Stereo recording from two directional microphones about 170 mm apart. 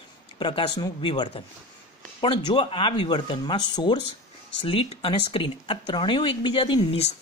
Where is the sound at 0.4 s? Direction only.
25° left (ahead or behind).